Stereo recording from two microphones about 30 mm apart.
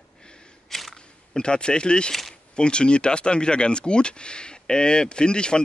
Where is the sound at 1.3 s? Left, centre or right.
Left.